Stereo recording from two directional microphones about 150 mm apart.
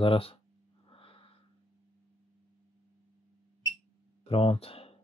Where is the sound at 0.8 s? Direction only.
35° left (ahead or behind).